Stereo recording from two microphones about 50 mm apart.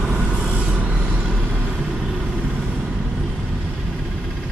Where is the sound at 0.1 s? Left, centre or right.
Right.